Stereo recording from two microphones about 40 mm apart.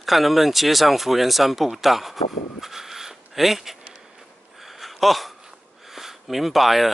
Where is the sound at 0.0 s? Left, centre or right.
Centre.